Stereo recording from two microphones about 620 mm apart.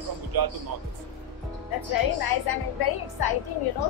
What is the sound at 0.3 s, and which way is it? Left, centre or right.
Music, right.